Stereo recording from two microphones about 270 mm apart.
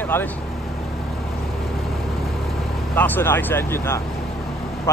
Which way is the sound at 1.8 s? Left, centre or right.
Centre.